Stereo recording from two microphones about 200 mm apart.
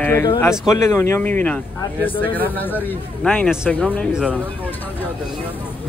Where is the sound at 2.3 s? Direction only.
10° left (ahead or behind).